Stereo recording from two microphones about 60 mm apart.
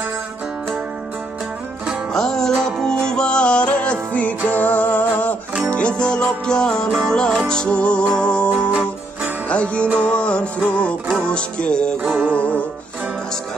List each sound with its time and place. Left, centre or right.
2.1 s music: centre
8.5 s music: right
9.5 s music: left